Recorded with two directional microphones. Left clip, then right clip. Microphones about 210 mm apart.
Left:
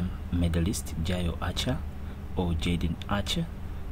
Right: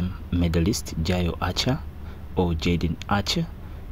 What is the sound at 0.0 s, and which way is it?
Speech, 25° right (ahead or behind).